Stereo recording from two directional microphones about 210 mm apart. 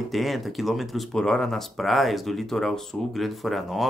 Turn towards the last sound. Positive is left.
turn(degrees=0)  # may be behind; listen again after turning